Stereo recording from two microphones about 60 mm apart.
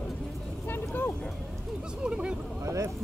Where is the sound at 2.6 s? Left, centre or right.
Right.